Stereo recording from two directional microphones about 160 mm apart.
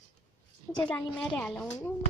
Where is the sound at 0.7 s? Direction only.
5° left (ahead or behind).